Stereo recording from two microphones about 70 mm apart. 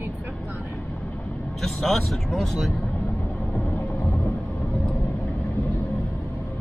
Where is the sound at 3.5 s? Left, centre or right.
Left.